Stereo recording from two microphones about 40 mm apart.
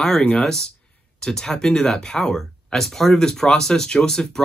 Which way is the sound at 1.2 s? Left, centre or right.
Centre.